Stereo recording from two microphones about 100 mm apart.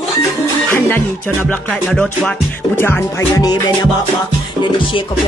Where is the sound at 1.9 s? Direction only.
10° left (ahead or behind).